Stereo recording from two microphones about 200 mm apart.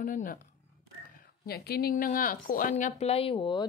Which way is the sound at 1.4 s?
50° left (ahead or behind).